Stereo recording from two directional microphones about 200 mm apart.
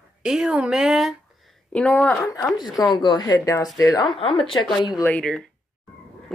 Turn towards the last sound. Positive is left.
turn(degrees=5)  # may be behind; listen again after turning